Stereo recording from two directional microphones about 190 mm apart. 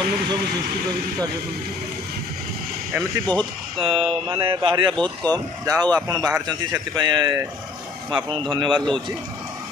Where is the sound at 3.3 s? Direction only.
30° right (ahead or behind).